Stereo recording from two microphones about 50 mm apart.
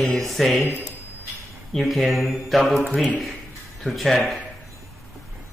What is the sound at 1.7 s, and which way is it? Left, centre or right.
Mantra, centre.